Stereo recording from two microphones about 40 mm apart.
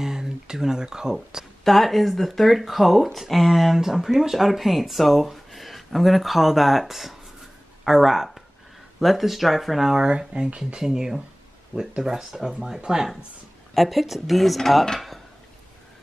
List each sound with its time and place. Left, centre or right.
0.0 s a sound: centre
1.6 s speech: centre
10.0 s speech: right
10.8 s speech: centre
13.7 s speech: centre